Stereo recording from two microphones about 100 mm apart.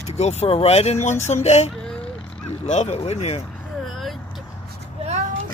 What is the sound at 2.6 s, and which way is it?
Speech, 90° left.